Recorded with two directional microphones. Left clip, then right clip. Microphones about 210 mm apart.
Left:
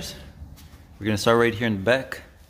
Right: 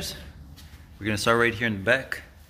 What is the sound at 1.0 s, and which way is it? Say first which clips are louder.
Speech: left 2 dB; 20° left (ahead or behind).